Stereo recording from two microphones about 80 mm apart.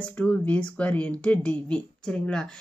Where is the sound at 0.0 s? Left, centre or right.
Centre.